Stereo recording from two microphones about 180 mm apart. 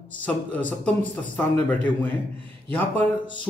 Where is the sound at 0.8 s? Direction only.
10° left (ahead or behind).